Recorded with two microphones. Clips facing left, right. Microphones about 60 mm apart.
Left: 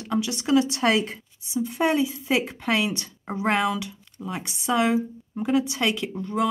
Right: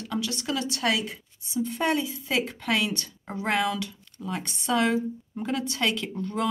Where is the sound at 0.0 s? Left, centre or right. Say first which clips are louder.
Left 4 dB; left.